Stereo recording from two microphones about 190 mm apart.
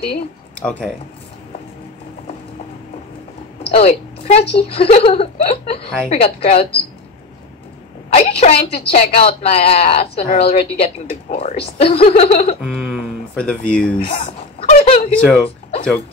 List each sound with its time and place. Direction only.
0.6 s speech: 5° left (ahead or behind)
3.7 s a woman's voice: 35° left (ahead or behind)
8.1 s a woman's voice: 35° left (ahead or behind)
12.6 s speech: centre (ahead or behind)
14.0 s a sound: 40° left (ahead or behind)
15.2 s speech: 5° left (ahead or behind)